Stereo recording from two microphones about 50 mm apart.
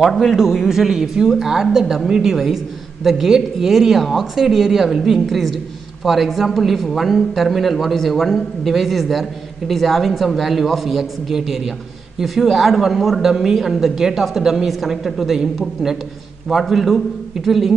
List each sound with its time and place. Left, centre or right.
0.1 s speech: centre
0.4 s a woman's voice: centre